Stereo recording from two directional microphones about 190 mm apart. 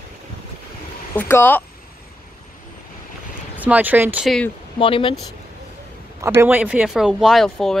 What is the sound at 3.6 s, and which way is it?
Speech, 10° right (ahead or behind).